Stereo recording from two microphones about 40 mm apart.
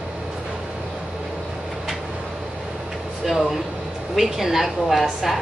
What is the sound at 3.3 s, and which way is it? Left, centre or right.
A woman's voice, centre.